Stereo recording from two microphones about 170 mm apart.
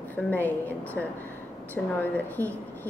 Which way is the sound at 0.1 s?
10° left (ahead or behind).